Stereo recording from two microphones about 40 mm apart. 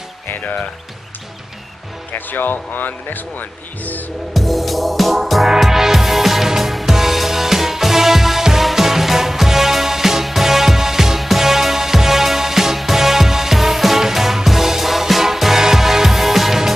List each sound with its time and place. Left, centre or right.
2.1 s speech: left
4.3 s music: centre